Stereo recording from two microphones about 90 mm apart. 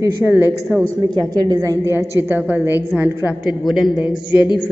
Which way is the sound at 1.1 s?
50° right (ahead or behind).